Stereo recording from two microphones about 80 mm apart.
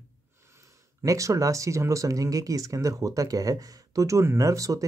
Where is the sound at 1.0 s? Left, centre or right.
Right.